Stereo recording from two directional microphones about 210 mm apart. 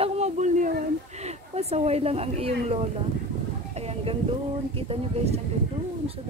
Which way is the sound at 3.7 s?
30° right (ahead or behind).